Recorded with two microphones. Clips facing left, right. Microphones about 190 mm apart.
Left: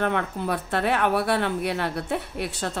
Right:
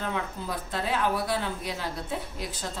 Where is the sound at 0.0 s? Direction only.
65° left (ahead or behind).